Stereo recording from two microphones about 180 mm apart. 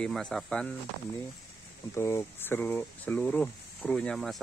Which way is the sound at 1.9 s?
15° left (ahead or behind).